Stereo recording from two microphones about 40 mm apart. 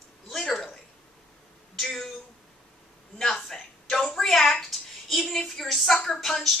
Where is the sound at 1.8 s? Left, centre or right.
Centre.